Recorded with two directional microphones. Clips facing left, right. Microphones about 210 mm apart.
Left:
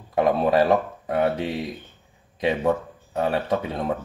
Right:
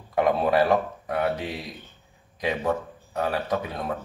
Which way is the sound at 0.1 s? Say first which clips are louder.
Left 2 dB; 25° left (ahead or behind).